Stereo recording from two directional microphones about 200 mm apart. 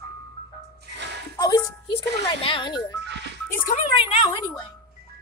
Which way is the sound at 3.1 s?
60° right (ahead or behind).